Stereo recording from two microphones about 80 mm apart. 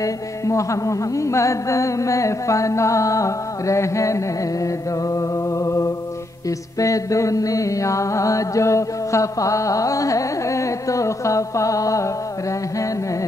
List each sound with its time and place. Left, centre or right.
0.0 s music: left
6.8 s mantra: left